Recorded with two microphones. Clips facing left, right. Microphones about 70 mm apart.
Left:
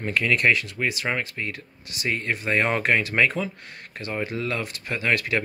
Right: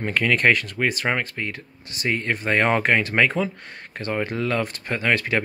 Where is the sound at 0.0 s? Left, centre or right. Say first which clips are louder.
Right 2 dB; right.